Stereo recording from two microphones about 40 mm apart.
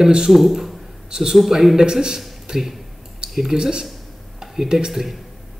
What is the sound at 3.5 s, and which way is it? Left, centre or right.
Speech, centre.